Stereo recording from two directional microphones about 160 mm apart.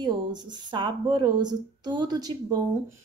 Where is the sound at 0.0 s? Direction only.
25° right (ahead or behind).